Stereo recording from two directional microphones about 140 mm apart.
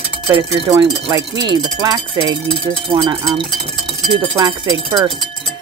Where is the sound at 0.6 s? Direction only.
30° right (ahead or behind).